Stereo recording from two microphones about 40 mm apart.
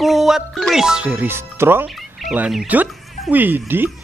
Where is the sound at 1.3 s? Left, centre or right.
Right.